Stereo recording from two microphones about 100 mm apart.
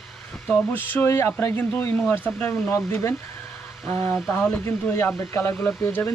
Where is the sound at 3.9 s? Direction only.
15° left (ahead or behind).